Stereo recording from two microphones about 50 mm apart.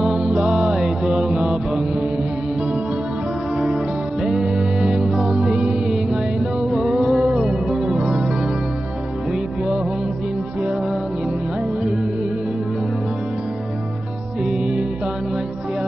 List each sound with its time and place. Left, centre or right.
0.3 s music: centre
1.0 s mantra: centre
3.5 s music: centre
5.3 s music: centre
7.2 s music: centre
14.4 s music: centre